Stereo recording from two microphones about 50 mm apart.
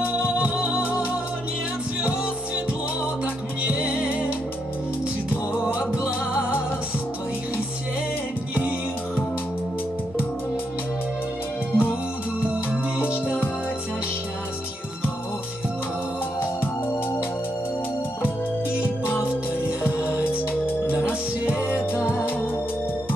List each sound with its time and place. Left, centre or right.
0.0 s music: right
3.6 s music: right
5.8 s music: right
11.7 s music: left
13.1 s music: right
18.8 s music: right